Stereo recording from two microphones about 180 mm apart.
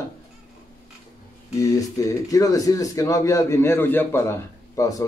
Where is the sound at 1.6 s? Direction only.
20° left (ahead or behind).